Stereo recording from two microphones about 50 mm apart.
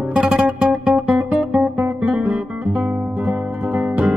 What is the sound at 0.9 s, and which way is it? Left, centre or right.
Guitar, right.